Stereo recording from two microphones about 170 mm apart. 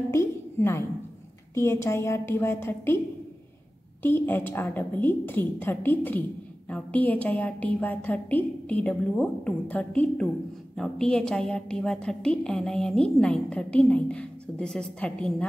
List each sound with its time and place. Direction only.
0.1 s a sound: 15° left (ahead or behind)
1.5 s a woman's voice: 15° left (ahead or behind)
4.0 s a woman's voice: 10° left (ahead or behind)